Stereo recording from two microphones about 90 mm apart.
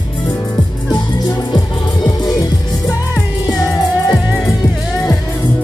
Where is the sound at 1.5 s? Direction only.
45° left (ahead or behind).